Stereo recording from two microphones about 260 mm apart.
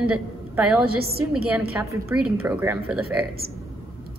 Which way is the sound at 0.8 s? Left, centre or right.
Right.